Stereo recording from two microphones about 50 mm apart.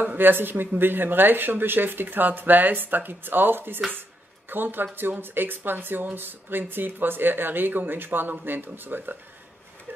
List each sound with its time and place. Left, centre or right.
0.0 s speech: right